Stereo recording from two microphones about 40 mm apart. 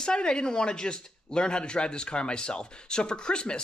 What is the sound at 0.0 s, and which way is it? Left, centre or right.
Speech, left.